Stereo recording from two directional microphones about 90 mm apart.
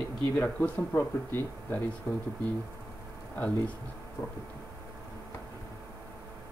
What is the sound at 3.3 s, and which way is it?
Speech, 15° left (ahead or behind).